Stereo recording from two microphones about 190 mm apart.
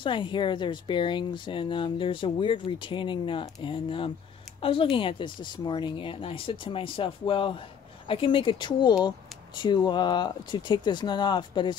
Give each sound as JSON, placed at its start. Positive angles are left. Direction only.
{"t": 0.0, "sound": "speech", "side_deg": 25}